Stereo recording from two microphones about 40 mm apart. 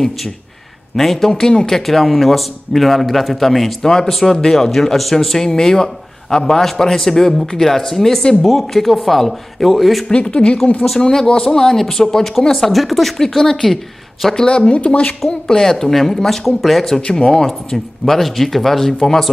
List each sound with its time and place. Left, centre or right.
0.9 s speech: centre
1.3 s a man's voice: centre
1.9 s a man's voice: centre
10.0 s speech: left
10.9 s a man's voice: centre; by 15.1 s left
15.2 s a man's voice: centre